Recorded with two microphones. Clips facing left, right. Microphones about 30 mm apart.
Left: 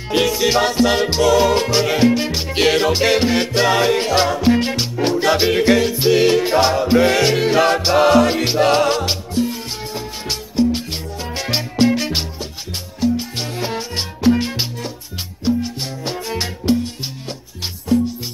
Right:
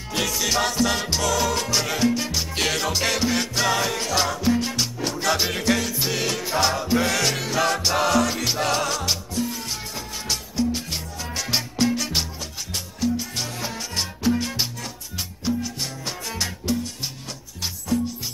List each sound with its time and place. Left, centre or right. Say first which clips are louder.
0.1 s music: left 8 dB; left
4.4 s music: left 7 dB; left
5.2 s music: left 7 dB; left
11.3 s salsa music: left 5 dB; left
15.4 s music: left 7 dB; left